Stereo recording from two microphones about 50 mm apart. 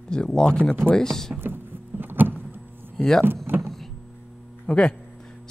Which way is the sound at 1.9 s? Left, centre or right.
Right.